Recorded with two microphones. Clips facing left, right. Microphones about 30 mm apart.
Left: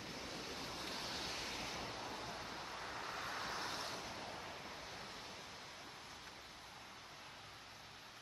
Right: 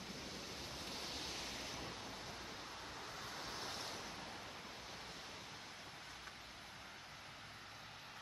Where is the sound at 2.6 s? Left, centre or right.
Centre.